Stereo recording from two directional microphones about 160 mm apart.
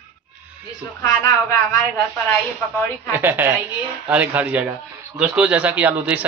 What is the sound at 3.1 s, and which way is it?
A man's voice, 15° right (ahead or behind).